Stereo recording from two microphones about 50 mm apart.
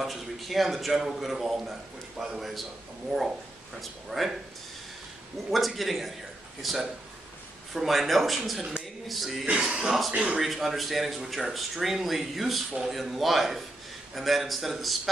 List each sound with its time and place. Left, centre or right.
0.0 s a man's voice: centre
5.5 s a man's voice: centre
9.5 s speech: centre
10.4 s a man's voice: centre